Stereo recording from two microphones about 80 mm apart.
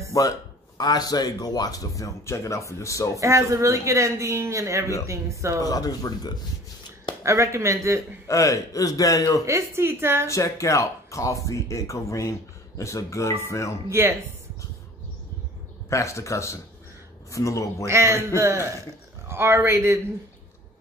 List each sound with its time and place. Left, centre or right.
0.1 s speech: left
3.2 s speech: right
5.6 s speech: left
7.2 s speech: right
8.3 s speech: left
9.5 s speech: right
10.2 s speech: left
13.8 s speech: right
15.9 s speech: left
17.8 s speech: right